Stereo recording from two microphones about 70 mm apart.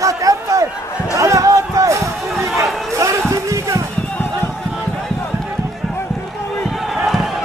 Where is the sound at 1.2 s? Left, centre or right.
Right.